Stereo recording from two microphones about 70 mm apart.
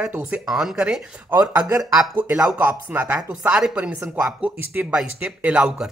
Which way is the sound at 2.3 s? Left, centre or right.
Centre.